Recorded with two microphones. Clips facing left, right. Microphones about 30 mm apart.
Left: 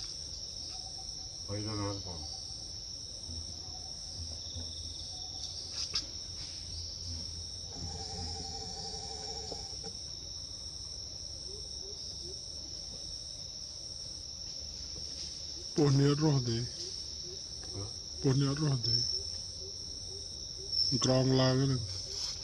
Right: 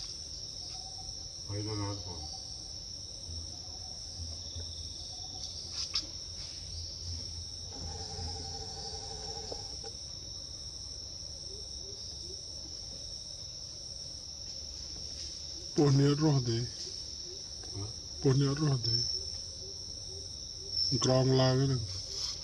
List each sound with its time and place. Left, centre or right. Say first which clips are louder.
1.5 s speech: left 1 dB; centre
7.8 s music: left 1 dB; right
15.7 s speech: right 1 dB; centre
20.9 s speech: right 1 dB; centre